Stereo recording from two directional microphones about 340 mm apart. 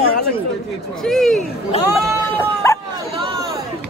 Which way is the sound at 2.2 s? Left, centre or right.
Centre.